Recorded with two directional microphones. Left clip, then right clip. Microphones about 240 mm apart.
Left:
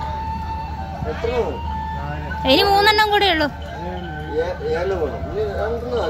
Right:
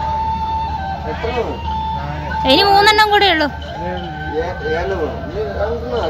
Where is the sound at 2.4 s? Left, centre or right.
Centre.